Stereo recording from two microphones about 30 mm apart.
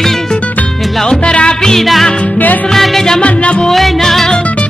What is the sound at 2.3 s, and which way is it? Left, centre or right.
Music, left.